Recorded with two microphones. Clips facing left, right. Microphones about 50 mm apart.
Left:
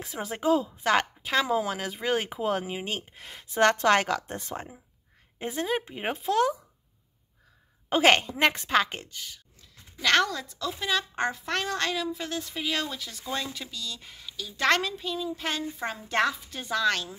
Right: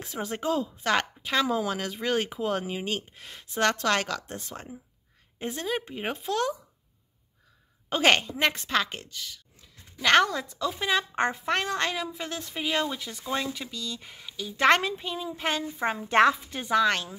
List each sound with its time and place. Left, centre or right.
0.0 s speech: centre
7.9 s speech: centre
10.0 s a woman's voice: centre
11.5 s a woman's voice: centre